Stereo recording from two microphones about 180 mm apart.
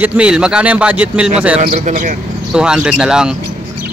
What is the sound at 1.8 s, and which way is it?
Speech, 40° right (ahead or behind).